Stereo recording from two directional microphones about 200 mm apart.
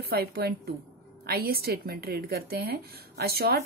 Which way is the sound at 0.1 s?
50° right (ahead or behind).